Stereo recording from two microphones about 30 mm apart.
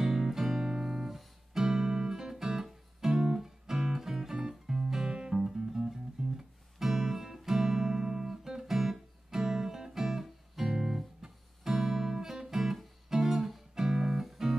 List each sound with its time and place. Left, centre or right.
0.0 s music: centre
10.7 s guitar: centre
13.1 s music: centre